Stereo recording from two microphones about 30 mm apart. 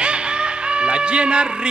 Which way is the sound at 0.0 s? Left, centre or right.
Right.